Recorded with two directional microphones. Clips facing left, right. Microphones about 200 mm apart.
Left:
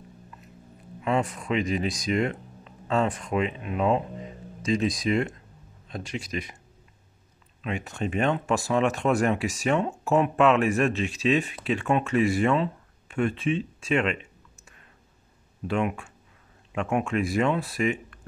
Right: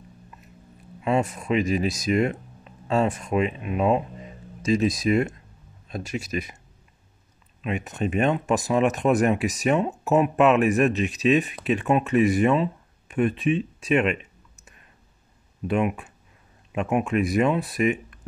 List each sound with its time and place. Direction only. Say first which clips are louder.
1.0 s speech: right 2 dB; 25° right (ahead or behind)
7.6 s speech: right 3 dB; 20° right (ahead or behind)
15.6 s speech: right 3 dB; 20° right (ahead or behind)